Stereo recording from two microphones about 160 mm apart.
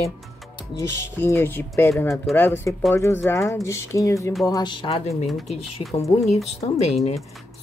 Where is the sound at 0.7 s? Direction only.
15° left (ahead or behind).